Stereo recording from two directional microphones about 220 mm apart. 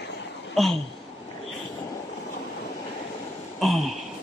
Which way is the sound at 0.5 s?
Centre (ahead or behind).